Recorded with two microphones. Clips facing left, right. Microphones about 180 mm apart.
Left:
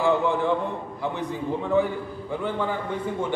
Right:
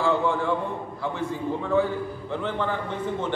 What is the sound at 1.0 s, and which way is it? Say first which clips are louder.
Speech: even; 15° left (ahead or behind).